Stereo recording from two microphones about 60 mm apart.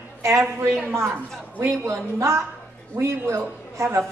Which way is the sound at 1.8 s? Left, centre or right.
Right.